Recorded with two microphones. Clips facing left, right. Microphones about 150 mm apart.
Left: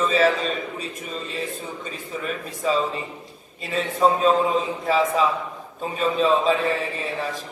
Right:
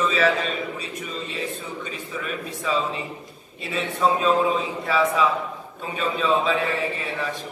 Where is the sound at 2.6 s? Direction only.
40° left (ahead or behind).